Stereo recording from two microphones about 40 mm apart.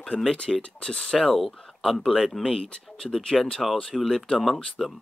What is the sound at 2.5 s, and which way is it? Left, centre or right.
Speech, centre.